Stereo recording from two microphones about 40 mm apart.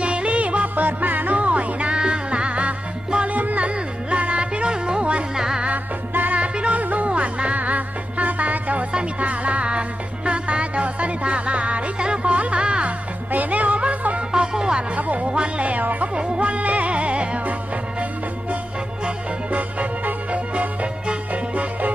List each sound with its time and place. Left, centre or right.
0.0 s music: right; by 5.6 s centre
6.3 s music: right
13.3 s music: right; by 14.9 s centre
15.0 s music: right
15.2 s music: right
19.0 s music: right